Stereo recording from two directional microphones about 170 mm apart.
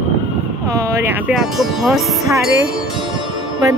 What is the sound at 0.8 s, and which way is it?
Speech, 15° right (ahead or behind).